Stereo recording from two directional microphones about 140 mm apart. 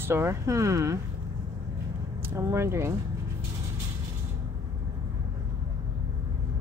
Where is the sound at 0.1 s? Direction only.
20° right (ahead or behind).